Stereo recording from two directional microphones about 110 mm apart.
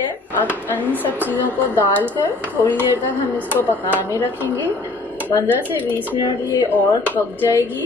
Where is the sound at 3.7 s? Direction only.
15° right (ahead or behind).